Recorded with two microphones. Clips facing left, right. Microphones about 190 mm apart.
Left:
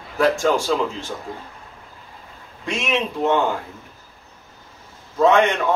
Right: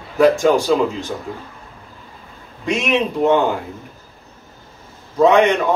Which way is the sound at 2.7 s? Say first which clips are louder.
Right 5 dB; 15° right (ahead or behind).